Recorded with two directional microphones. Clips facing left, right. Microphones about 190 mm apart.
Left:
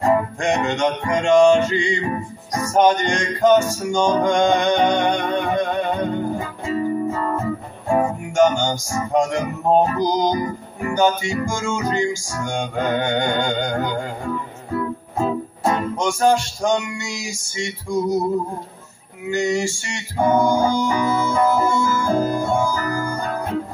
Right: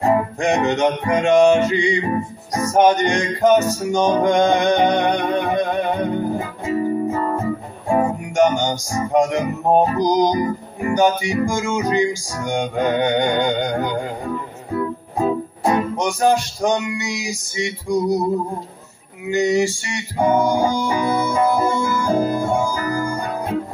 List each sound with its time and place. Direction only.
0.0 s music: 20° right (ahead or behind)
19.3 s music: 20° right (ahead or behind)